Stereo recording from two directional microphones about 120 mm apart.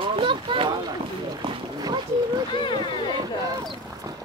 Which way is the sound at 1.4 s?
40° right (ahead or behind).